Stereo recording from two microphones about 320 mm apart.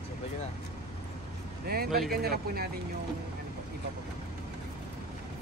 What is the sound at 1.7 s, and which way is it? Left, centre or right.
Speech, right.